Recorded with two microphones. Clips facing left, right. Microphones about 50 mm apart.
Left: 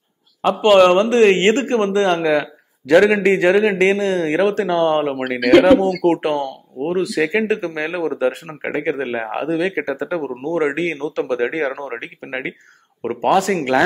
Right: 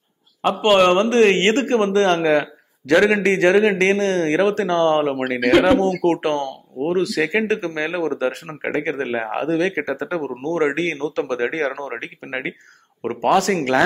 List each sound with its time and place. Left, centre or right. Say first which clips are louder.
0.4 s speech: left 3 dB; right
1.0 s speech: left 2 dB; centre
1.7 s speech: even; right
2.1 s speech: even; centre